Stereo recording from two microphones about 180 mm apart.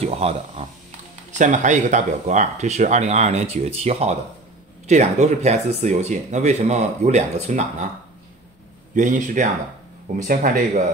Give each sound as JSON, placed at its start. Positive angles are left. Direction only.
{"t": 0.0, "sound": "speech", "side_deg": -35}
{"t": 8.9, "sound": "speech", "side_deg": -45}